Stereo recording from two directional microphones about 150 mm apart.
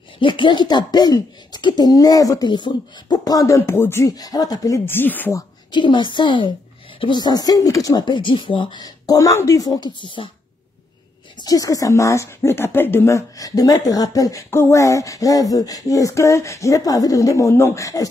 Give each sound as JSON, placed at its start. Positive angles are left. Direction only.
{"t": 0.2, "sound": "speech", "side_deg": 35}
{"t": 5.7, "sound": "a woman's voice", "side_deg": 30}
{"t": 11.3, "sound": "speech", "side_deg": 25}